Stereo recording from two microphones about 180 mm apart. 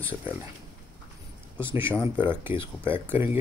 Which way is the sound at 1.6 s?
10° right (ahead or behind).